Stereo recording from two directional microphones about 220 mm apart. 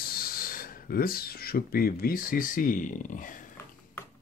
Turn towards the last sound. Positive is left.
turn(degrees=35)  # may be behind; listen again after turning